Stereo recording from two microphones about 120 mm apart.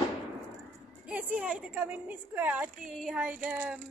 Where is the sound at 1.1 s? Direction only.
10° right (ahead or behind).